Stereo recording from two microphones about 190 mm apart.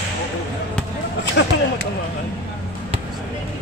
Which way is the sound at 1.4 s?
65° left (ahead or behind).